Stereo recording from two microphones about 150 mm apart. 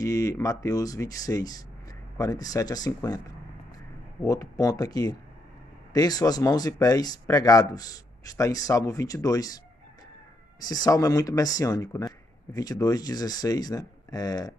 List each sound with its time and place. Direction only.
0.0 s speech: 20° left (ahead or behind)
4.3 s speech: 25° left (ahead or behind)
10.7 s speech: 25° left (ahead or behind)